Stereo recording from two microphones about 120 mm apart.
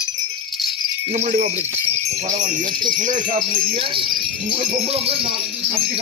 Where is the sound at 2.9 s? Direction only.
90° right.